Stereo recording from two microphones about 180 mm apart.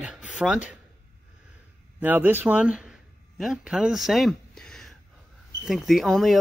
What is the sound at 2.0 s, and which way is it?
A man's voice, 10° right (ahead or behind).